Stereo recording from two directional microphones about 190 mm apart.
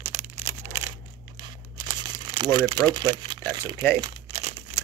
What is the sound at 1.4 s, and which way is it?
Crumpling, 25° right (ahead or behind).